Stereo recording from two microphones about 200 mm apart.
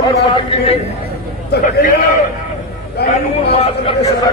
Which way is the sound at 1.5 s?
55° left (ahead or behind).